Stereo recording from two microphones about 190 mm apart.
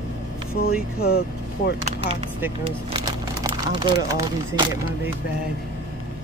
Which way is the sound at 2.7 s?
25° right (ahead or behind).